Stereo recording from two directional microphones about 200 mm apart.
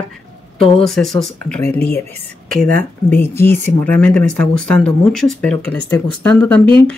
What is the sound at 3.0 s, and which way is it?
Speech, 10° left (ahead or behind).